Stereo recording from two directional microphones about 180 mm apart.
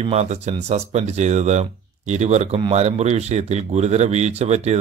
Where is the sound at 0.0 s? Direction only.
35° right (ahead or behind).